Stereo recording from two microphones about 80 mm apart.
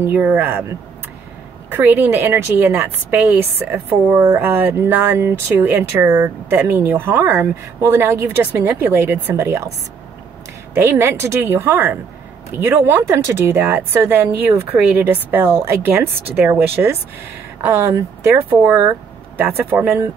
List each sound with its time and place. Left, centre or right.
0.0 s speech: right
1.7 s speech: right
15.5 s speech: right
18.5 s speech: right